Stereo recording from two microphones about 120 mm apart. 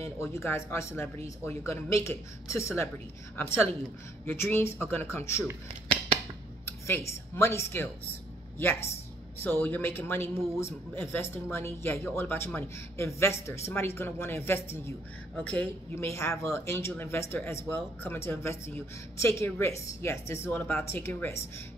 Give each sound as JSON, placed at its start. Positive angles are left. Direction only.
{"t": 0.2, "sound": "speech", "side_deg": 20}
{"t": 6.6, "sound": "speech", "side_deg": 20}